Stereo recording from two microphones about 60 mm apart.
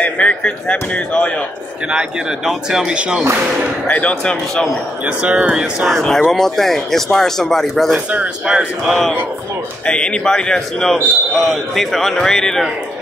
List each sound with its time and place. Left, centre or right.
0.0 s speech: left
1.9 s speech: centre
3.8 s a man's voice: centre
5.0 s speech: centre
5.8 s a man's voice: centre
8.5 s speech: centre
9.8 s a man's voice: centre